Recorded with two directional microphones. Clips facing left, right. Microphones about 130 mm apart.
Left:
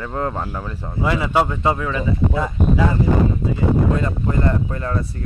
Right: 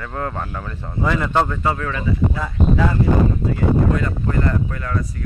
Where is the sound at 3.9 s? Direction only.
25° left (ahead or behind).